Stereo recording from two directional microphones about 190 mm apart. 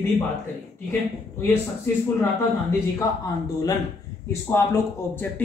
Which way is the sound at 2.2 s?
15° left (ahead or behind).